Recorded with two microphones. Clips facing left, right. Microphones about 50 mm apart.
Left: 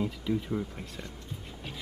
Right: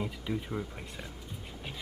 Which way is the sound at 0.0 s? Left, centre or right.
Centre.